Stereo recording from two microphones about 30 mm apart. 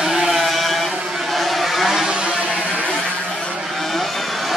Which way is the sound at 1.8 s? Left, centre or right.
Centre.